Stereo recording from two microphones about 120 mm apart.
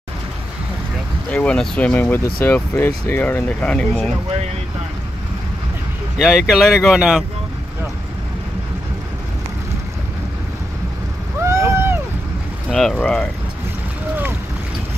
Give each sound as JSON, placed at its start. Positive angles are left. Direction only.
{"t": 1.3, "sound": "speech", "side_deg": 10}
{"t": 6.1, "sound": "speech", "side_deg": 0}
{"t": 11.4, "sound": "boat", "side_deg": -25}
{"t": 12.7, "sound": "speech", "side_deg": 5}